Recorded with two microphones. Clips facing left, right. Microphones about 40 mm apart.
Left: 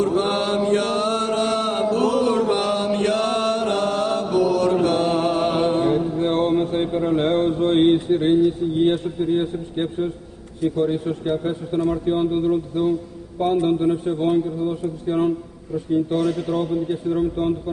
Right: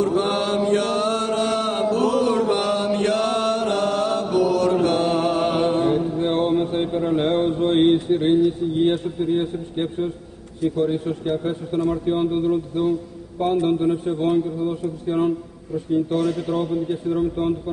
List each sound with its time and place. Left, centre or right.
0.2 s mantra: left
0.7 s chant: left
2.5 s mantra: left
3.7 s chant: left
4.5 s mantra: left
4.8 s mantra: right
5.1 s music: left
5.9 s music: centre
6.5 s a sound: centre
7.3 s mantra: centre
8.9 s a man's voice: centre